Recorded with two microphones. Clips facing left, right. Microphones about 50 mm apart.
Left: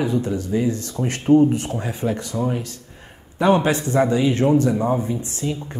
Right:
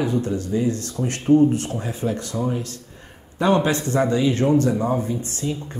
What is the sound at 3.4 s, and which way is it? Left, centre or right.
Speech, centre.